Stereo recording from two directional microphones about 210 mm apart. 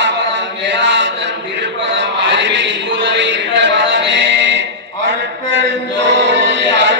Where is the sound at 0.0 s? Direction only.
60° right (ahead or behind).